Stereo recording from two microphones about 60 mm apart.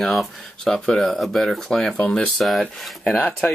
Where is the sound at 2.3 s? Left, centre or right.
Centre.